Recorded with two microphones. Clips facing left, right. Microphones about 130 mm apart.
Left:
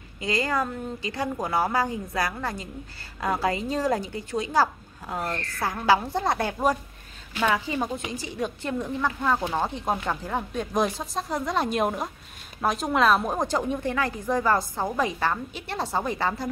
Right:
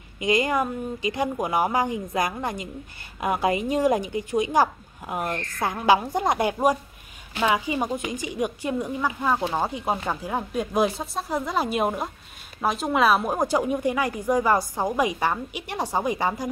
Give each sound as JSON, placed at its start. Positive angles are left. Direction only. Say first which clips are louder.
{"t": 0.2, "sound": "a woman's voice", "louder": "right 4 dB", "side_deg": -20}